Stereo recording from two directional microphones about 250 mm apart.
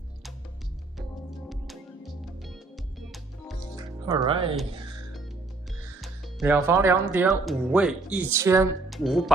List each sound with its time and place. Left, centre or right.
1.5 s music: centre
4.0 s speech: centre
5.9 s speech: centre
8.8 s speech: centre